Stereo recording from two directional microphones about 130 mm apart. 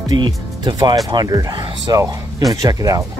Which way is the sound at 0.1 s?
35° right (ahead or behind).